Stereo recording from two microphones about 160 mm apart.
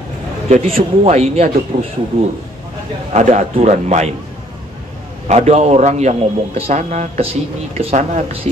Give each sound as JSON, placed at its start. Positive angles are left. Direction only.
{"t": 0.5, "sound": "speech", "side_deg": -40}
{"t": 3.1, "sound": "a man's voice", "side_deg": -50}
{"t": 5.3, "sound": "a man's voice", "side_deg": -45}